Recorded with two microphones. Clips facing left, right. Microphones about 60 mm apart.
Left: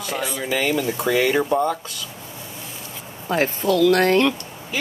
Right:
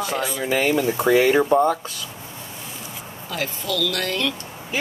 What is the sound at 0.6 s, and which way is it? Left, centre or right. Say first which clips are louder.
Speech: right 3 dB; centre.